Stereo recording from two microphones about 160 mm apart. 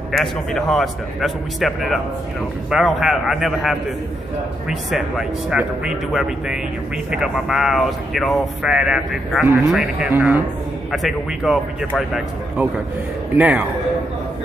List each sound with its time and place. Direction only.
0.1 s speech: centre (ahead or behind)
13.4 s speech: 5° right (ahead or behind)